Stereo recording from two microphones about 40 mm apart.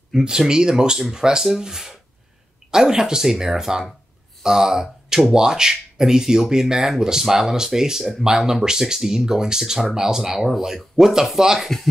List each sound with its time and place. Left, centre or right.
0.1 s speech: centre